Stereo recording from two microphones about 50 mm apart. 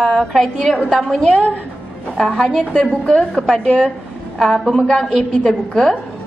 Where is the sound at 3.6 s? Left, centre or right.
Centre.